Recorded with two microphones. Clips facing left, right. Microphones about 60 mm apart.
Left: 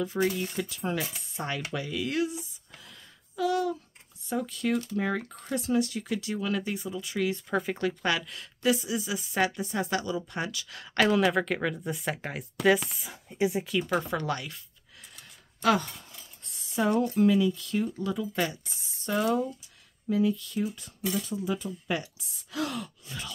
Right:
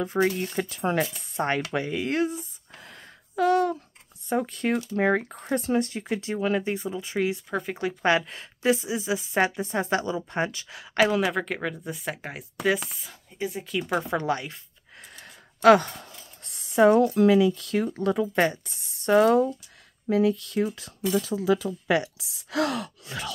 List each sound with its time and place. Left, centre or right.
0.4 s speech: right
1.0 s speech: centre
1.3 s cutlery: right
1.7 s a sound: right
4.3 s speech: right
7.4 s speech: centre
8.0 s speech: right
10.7 s speech: centre
13.1 s speech: centre
14.1 s speech: right
15.1 s speech: right
21.1 s speech: right